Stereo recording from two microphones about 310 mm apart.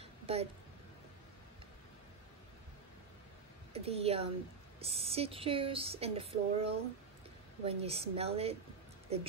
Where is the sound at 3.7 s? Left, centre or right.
Centre.